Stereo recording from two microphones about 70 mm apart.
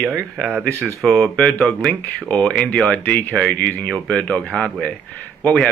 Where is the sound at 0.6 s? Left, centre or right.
Centre.